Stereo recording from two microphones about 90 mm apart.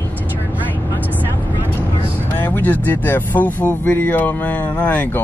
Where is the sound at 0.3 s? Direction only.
20° right (ahead or behind).